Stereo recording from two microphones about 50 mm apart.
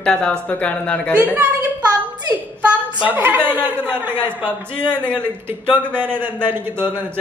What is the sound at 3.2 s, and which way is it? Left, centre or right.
A man's voice, right.